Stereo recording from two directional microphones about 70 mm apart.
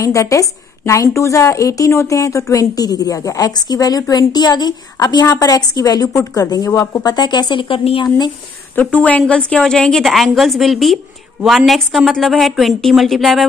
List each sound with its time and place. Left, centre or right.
0.0 s a woman's voice: left
2.7 s a woman's voice: left
4.9 s a woman's voice: left
7.0 s speech: left
8.7 s a woman's voice: left
9.6 s a woman's voice: centre